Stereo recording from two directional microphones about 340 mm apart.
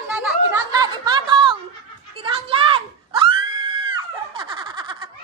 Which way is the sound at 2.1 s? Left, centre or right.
Centre.